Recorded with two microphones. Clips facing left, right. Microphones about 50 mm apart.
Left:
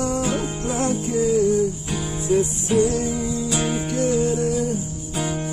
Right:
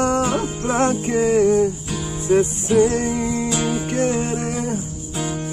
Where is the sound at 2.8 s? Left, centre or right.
Right.